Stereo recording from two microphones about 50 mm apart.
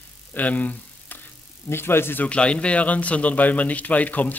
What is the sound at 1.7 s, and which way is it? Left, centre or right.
Speech, left.